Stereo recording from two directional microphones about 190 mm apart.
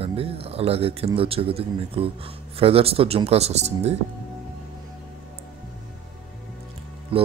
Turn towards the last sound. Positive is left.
turn(degrees=-30)  # may be behind; listen again after turning